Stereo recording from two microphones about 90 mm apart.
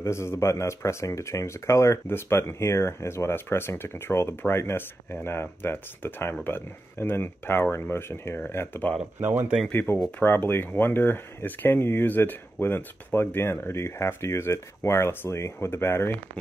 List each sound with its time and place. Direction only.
0.0 s speech: 30° left (ahead or behind)
9.2 s speech: 25° right (ahead or behind)
9.7 s speech: 25° left (ahead or behind)